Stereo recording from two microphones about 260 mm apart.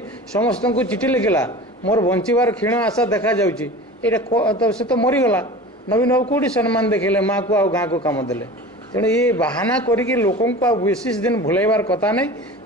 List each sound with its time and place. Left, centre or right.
0.4 s a man's voice: centre